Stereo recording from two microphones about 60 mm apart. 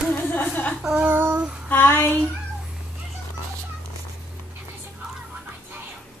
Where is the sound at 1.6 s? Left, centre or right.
Left.